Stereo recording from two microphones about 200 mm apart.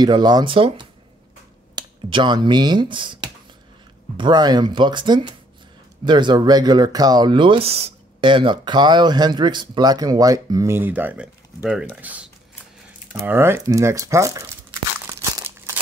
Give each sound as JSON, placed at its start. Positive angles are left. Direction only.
{"t": 0.0, "sound": "speech", "side_deg": -20}
{"t": 4.2, "sound": "speech", "side_deg": -20}
{"t": 15.0, "sound": "crumpling", "side_deg": -15}